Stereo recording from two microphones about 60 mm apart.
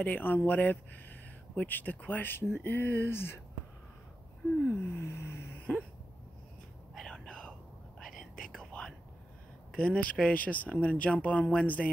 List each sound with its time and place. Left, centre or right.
0.0 s speech: left
4.6 s a sound: left
7.0 s whispering: centre
9.7 s speech: centre